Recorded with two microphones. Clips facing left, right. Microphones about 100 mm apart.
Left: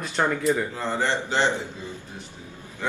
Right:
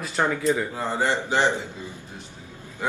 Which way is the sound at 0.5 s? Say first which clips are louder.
Even; 15° right (ahead or behind).